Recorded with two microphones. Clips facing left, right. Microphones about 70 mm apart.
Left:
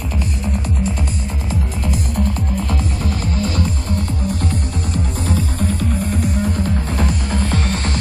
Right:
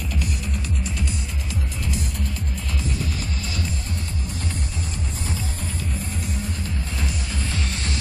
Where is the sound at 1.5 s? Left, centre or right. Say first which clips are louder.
Left 7 dB; left.